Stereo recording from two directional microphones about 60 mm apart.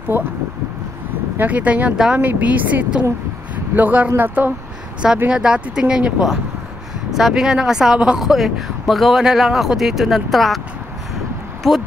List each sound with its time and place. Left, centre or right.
0.1 s speech: right
1.4 s speech: right
5.3 s speech: centre
11.6 s speech: centre